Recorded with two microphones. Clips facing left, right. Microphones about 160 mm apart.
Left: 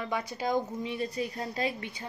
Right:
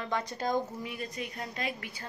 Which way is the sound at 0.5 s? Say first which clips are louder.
Left 3 dB; 25° left (ahead or behind).